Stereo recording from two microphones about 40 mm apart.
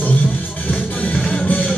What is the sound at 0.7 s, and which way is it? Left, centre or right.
Music, left.